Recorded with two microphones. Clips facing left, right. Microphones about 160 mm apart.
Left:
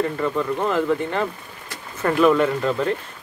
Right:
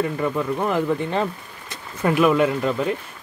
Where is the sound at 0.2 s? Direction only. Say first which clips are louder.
Even; 10° right (ahead or behind).